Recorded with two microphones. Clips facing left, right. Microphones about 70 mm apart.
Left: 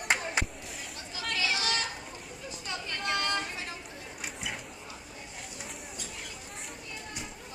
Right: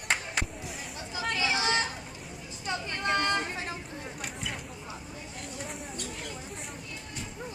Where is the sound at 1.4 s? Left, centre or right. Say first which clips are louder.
Right 3 dB; right.